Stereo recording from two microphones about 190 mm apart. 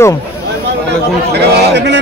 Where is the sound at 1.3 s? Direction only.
65° right (ahead or behind).